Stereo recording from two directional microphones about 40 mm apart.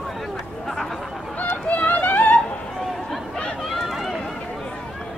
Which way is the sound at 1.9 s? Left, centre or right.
Left.